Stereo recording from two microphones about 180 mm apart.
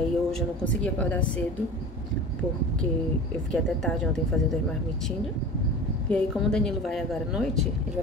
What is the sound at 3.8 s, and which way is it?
Speech, 5° left (ahead or behind).